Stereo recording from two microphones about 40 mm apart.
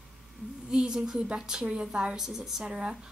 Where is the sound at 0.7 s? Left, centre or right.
Centre.